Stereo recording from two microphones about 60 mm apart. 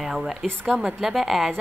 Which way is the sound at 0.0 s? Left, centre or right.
Centre.